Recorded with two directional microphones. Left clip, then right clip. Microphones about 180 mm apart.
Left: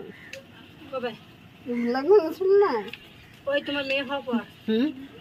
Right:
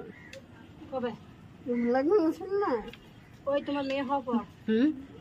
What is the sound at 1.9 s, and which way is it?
Speech, 50° left (ahead or behind).